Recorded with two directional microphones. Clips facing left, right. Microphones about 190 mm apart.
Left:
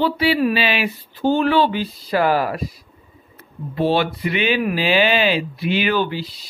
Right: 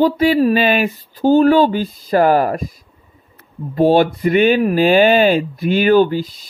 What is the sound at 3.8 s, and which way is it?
Speech, 45° right (ahead or behind).